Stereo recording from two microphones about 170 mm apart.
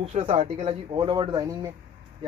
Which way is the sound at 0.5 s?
30° right (ahead or behind).